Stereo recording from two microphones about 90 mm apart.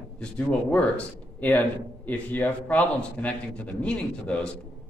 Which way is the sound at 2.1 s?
20° left (ahead or behind).